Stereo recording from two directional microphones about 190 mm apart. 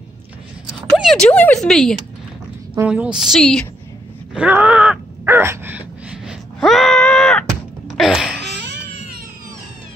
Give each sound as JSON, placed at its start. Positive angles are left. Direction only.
{"t": 0.9, "sound": "a woman's voice", "side_deg": 0}
{"t": 4.3, "sound": "wail", "side_deg": -5}
{"t": 7.9, "sound": "music", "side_deg": 0}
{"t": 8.4, "sound": "a sound", "side_deg": -65}